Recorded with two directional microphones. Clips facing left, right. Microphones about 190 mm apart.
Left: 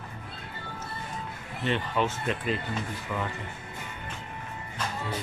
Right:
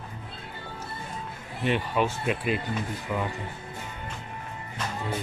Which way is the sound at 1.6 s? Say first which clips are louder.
Right 2 dB; 10° right (ahead or behind).